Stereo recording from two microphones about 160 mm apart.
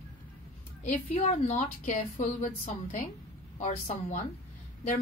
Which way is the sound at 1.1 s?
50° left (ahead or behind).